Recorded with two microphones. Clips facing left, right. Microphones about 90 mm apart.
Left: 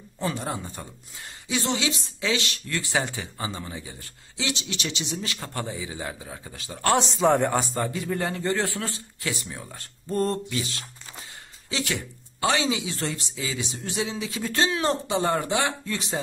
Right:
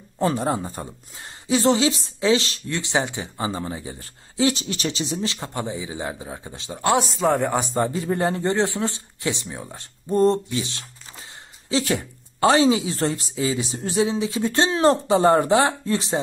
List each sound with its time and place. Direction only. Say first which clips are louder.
0.2 s a woman's voice: right 7 dB; 40° right (ahead or behind); by 7.5 s centre (ahead or behind)
7.7 s a woman's voice: right 5 dB; 30° right (ahead or behind)